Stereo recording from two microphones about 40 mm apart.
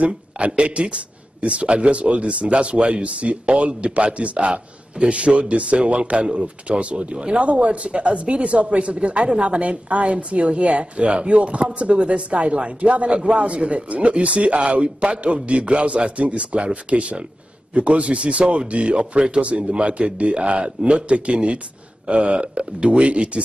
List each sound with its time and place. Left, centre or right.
0.0 s speech: right